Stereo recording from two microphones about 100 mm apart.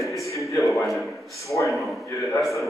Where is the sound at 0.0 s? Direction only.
Centre (ahead or behind).